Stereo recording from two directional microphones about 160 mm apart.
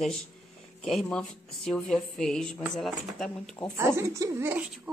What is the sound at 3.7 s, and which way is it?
Speech, 20° right (ahead or behind).